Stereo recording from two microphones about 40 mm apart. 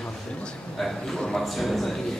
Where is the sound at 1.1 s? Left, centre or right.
Centre.